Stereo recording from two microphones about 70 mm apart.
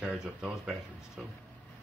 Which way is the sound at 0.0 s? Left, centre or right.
Centre.